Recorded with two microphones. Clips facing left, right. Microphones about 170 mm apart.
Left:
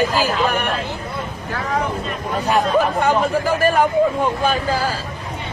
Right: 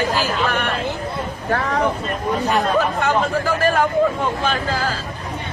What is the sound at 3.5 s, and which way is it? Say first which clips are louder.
A man's voice: left 3 dB; 15° left (ahead or behind).